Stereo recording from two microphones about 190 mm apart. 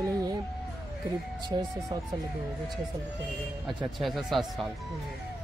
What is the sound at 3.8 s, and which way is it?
Speech, centre (ahead or behind).